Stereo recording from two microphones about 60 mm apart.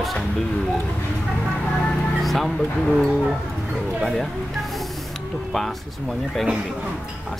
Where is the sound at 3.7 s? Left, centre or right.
Centre.